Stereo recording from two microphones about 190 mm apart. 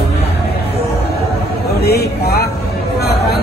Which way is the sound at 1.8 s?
55° left (ahead or behind).